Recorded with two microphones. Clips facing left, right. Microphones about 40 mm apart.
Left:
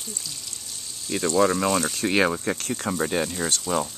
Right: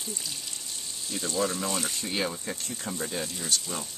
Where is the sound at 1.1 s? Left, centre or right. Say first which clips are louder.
Left 9 dB; left.